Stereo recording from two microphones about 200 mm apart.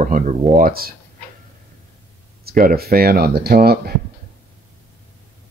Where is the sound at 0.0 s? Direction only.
40° right (ahead or behind).